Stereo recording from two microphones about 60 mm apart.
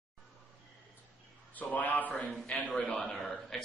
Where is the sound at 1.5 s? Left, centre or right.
Left.